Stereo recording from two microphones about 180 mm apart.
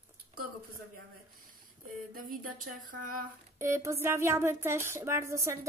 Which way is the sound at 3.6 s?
15° right (ahead or behind).